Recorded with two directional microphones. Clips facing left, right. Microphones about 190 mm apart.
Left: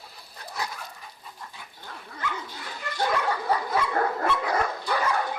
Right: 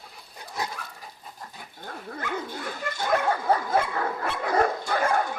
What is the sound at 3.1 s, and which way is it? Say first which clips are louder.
Dog: right 6 dB; 50° right (ahead or behind).